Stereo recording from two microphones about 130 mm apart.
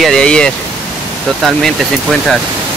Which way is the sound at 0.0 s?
5° left (ahead or behind).